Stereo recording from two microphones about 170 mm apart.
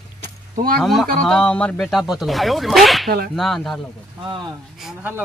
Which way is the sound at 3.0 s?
65° right (ahead or behind).